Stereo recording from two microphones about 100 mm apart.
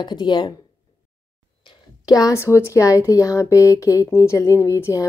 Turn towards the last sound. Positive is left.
turn(degrees=30)  # may be behind; listen again after turning